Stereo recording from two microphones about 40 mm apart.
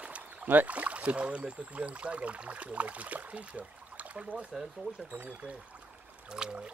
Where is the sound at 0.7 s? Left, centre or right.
Right.